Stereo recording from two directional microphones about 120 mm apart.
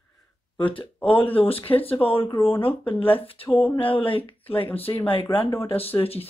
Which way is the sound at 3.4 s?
50° left (ahead or behind).